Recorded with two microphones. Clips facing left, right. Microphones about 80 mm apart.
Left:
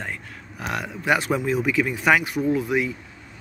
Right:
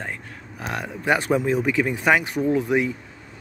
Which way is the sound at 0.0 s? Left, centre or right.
Right.